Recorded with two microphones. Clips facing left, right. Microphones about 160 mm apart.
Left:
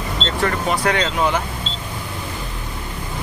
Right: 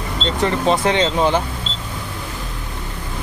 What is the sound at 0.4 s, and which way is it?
Speech, 20° right (ahead or behind).